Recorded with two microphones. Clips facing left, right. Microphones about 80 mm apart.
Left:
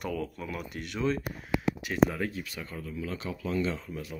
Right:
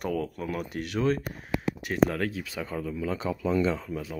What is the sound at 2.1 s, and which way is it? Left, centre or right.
Speech, right.